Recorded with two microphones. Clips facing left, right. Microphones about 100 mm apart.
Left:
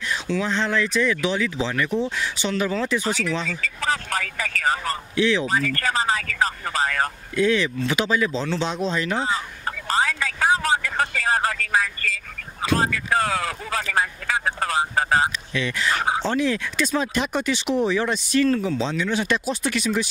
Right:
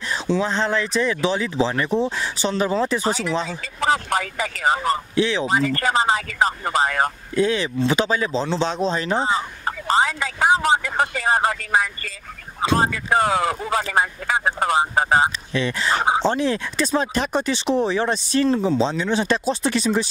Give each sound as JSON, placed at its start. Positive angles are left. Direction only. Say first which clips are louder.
{"t": 0.1, "sound": "speech", "louder": "right 3 dB", "side_deg": -30}